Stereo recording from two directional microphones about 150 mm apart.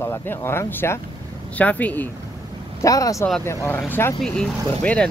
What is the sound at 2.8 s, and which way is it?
Speech, 20° left (ahead or behind).